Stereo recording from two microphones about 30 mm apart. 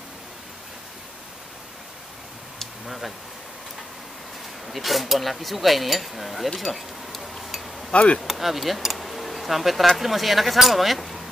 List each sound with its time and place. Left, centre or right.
4.6 s speech: centre
7.9 s speech: left
8.2 s speech: centre